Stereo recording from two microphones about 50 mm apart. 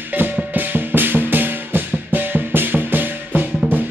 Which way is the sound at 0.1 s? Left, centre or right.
Right.